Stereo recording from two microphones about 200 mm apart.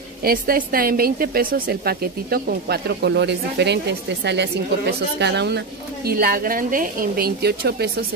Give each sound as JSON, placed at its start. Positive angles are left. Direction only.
{"t": 0.2, "sound": "speech", "side_deg": -45}